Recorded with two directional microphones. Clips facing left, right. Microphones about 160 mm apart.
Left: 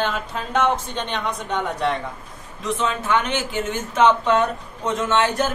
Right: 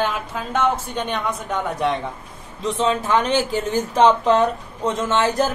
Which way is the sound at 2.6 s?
30° right (ahead or behind).